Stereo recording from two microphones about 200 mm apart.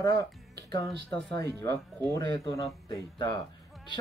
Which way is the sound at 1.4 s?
15° left (ahead or behind).